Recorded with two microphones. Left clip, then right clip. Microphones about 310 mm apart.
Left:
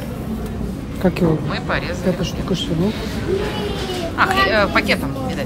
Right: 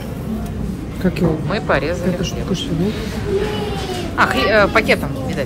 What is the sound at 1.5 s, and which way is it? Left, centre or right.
Speech, centre.